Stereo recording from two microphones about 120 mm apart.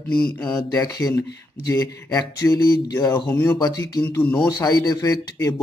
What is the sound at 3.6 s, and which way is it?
Speech, 35° left (ahead or behind).